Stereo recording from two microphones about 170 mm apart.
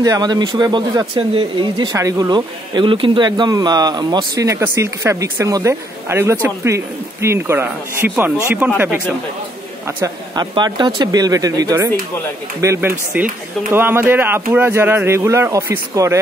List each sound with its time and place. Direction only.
0.0 s speech: 25° right (ahead or behind); by 9.0 s 5° right (ahead or behind)
9.9 s speech: 20° right (ahead or behind)